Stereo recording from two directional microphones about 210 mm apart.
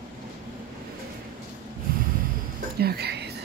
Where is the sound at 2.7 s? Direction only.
50° right (ahead or behind).